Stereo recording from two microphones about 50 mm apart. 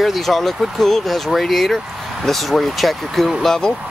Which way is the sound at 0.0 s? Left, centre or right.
Centre.